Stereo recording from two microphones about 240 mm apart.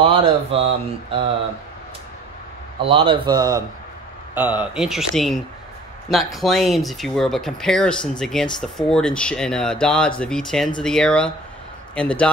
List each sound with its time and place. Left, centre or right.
0.0 s speech: right
2.8 s a man's voice: right; by 12.3 s centre